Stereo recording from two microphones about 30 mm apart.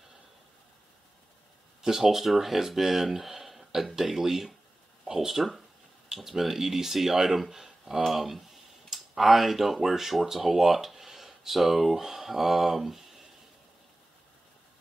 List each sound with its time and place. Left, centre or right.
1.8 s speech: centre
2.0 s speech: centre
5.3 s speech: centre